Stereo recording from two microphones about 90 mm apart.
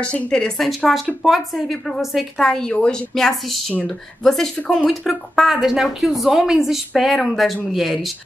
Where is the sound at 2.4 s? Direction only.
10° left (ahead or behind).